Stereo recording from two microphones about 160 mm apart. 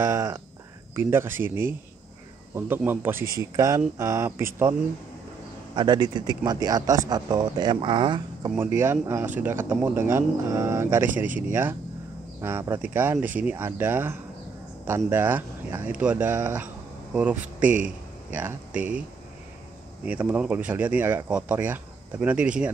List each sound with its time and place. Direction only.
0.0 s speech: 20° right (ahead or behind)
5.8 s speech: 25° right (ahead or behind)
8.5 s speech: 15° right (ahead or behind)
11.2 s speech: 55° right (ahead or behind)
12.4 s speech: 15° right (ahead or behind)
20.1 s speech: 10° right (ahead or behind)